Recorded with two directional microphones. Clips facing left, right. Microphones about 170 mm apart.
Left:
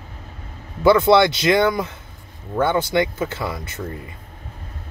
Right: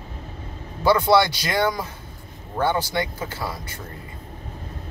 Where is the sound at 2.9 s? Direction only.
20° left (ahead or behind).